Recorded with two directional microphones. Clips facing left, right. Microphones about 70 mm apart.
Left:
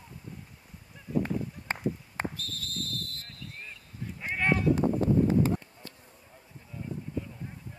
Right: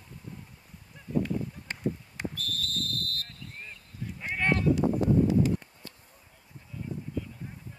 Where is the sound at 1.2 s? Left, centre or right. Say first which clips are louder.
Even; left.